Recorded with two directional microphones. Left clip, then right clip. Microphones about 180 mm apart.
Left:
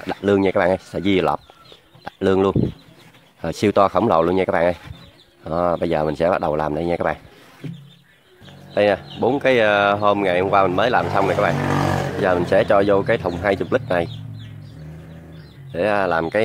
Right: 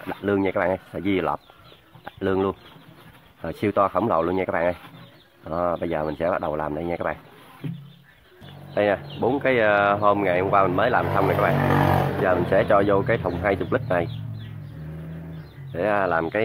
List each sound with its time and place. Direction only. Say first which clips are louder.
0.0 s speech: left 6 dB; 50° left (ahead or behind)
8.7 s speech: left 4 dB; 40° left (ahead or behind)
15.7 s speech: left 3 dB; 40° left (ahead or behind)